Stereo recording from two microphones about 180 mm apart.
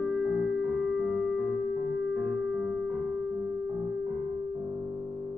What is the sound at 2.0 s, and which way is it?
Music, 10° right (ahead or behind).